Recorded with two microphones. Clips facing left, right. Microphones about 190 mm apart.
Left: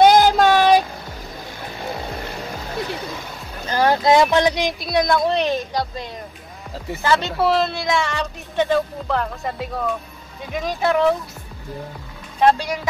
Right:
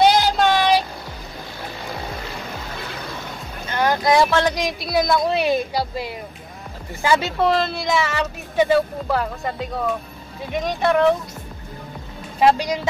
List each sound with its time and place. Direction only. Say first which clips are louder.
0.0 s child singing: left 3 dB; 50° left (ahead or behind)
3.6 s boat: left 3 dB; 30° left (ahead or behind); by 4.6 s 15° left (ahead or behind)
4.6 s speech: left 1 dB; centre (ahead or behind)
7.3 s speech: even; 5° left (ahead or behind)
12.4 s speech: even; 10° right (ahead or behind)